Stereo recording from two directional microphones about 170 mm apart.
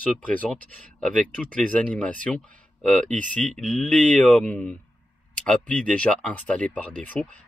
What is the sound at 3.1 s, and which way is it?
Speech, 50° right (ahead or behind).